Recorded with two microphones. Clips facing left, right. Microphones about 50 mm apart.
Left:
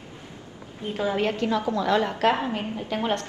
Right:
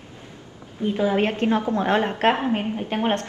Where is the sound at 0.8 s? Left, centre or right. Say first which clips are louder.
Right 4 dB; right.